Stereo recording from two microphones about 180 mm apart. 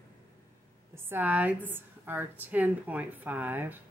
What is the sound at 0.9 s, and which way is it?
A woman's voice, 10° right (ahead or behind).